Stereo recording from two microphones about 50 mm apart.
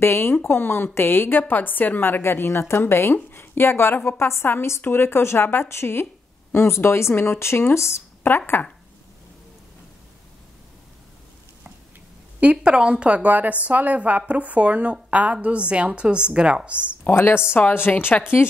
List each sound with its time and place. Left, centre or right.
0.0 s speech: left
4.2 s speech: left
4.8 s a woman's voice: left
7.7 s speech: left
8.2 s speech: left
12.4 s a woman's voice: right
17.1 s speech: left